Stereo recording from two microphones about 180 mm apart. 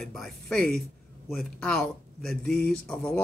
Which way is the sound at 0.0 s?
Centre (ahead or behind).